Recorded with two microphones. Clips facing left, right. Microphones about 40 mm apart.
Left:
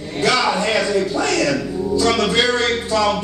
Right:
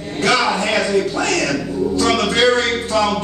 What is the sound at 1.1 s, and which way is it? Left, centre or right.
Speech, right.